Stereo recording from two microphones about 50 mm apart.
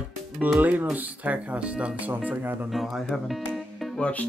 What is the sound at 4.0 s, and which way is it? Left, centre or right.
Speech, left.